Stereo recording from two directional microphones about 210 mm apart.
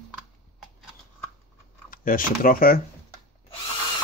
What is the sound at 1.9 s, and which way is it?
Speech, 40° left (ahead or behind).